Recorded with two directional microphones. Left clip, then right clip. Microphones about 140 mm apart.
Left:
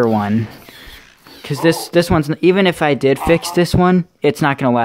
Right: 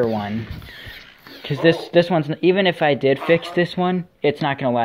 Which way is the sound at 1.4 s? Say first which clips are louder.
Left 2 dB; 45° left (ahead or behind).